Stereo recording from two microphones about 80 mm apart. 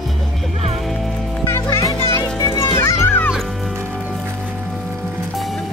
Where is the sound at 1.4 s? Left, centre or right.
Left.